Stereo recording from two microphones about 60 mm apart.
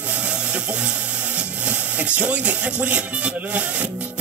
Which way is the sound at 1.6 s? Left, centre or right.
Right.